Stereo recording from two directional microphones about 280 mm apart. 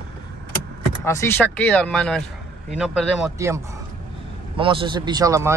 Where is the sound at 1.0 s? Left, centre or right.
Centre.